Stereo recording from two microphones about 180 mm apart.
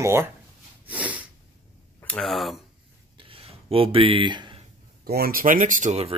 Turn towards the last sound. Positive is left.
turn(degrees=-35)  # may be behind; listen again after turning